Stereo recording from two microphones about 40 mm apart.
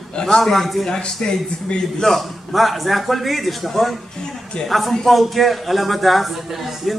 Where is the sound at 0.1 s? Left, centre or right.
Centre.